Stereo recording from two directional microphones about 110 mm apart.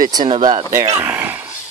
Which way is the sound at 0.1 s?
40° right (ahead or behind).